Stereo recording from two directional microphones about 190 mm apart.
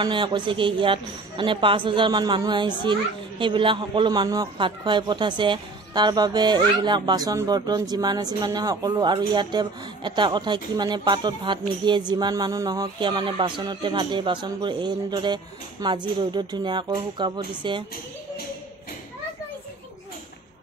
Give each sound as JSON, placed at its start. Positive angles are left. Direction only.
{"t": 0.0, "sound": "speech", "side_deg": -25}